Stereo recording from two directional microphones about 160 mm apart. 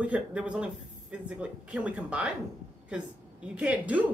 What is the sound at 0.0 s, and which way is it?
Speech, 5° right (ahead or behind).